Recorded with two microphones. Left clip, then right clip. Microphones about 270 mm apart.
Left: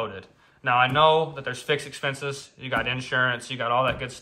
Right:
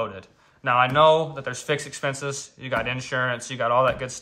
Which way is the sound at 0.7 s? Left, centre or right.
Centre.